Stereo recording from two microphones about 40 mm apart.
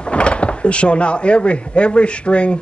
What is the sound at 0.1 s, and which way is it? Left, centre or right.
Speech, left.